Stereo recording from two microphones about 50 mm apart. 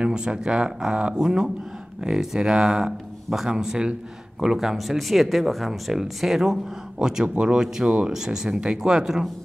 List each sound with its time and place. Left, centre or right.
0.0 s speech: centre